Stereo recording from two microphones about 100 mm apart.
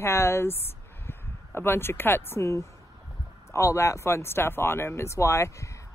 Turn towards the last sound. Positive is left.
turn(degrees=30)  # may be behind; listen again after turning